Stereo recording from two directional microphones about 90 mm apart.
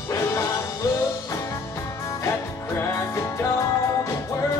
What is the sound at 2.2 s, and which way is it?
Music, 30° left (ahead or behind).